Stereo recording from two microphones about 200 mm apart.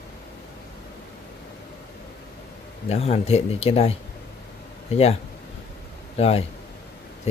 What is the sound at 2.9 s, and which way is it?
Speech, 30° left (ahead or behind).